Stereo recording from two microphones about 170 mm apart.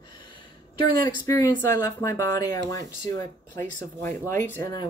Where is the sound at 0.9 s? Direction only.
25° left (ahead or behind).